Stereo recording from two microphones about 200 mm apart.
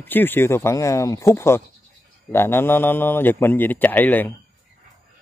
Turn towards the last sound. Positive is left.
turn(degrees=10)  # may be behind; listen again after turning